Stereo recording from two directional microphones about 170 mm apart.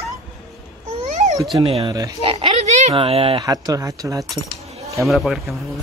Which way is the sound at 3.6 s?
20° right (ahead or behind).